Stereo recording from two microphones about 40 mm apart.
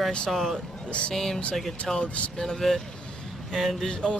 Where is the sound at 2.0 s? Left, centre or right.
Left.